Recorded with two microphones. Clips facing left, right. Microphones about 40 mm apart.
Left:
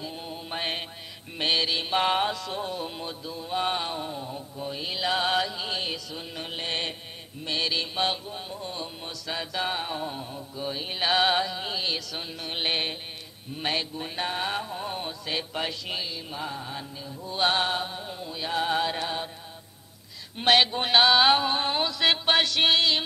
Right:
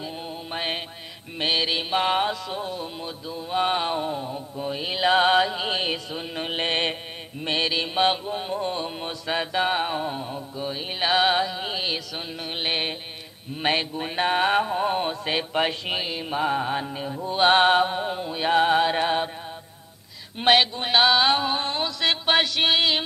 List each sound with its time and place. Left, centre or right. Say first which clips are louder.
0.0 s music: right 3 dB; centre; by 7.0 s right
7.4 s mantra: right 4 dB; right
7.7 s music: right 5 dB; right
10.6 s music: right 2 dB; centre
13.6 s mantra: right 5 dB; right
17.3 s mantra: right 8 dB; right
18.7 s music: right 6 dB; right
20.3 s music: right 2 dB; centre
20.8 s music: even; centre